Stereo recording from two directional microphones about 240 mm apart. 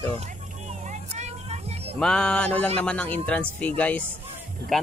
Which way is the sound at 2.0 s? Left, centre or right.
Centre.